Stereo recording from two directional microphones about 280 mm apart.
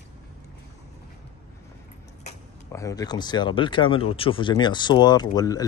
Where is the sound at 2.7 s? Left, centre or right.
Centre.